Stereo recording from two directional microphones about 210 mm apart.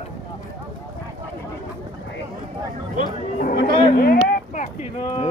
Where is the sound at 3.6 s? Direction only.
25° left (ahead or behind).